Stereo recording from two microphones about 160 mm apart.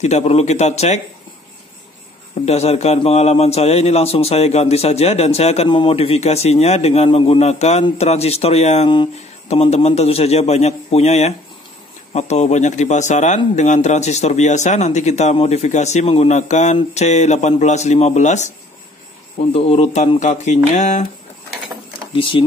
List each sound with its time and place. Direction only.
0.0 s speech: 45° left (ahead or behind)
2.4 s a man's voice: 40° left (ahead or behind)
19.5 s a man's voice: 40° left (ahead or behind)
22.1 s speech: 35° left (ahead or behind)